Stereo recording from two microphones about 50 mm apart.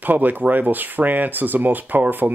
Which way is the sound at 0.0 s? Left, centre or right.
Right.